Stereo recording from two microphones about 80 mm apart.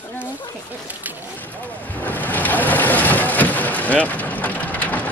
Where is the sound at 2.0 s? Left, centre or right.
Left.